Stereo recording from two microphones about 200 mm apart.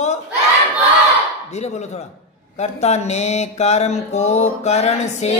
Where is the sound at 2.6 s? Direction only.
35° left (ahead or behind).